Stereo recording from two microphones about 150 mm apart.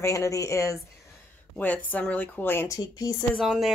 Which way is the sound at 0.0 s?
20° left (ahead or behind).